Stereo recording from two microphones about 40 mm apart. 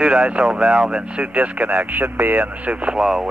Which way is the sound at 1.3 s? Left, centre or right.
Right.